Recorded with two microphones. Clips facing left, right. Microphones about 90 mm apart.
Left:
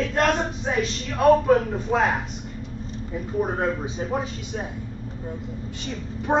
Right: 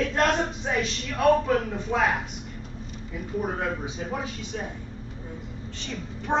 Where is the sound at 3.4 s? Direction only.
35° left (ahead or behind).